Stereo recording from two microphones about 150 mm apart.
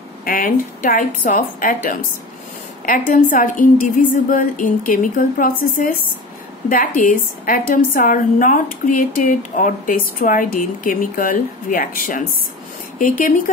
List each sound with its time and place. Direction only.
0.2 s a woman's voice: 65° left (ahead or behind)